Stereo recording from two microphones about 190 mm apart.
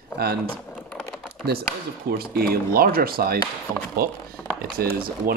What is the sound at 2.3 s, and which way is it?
Speech, 50° right (ahead or behind).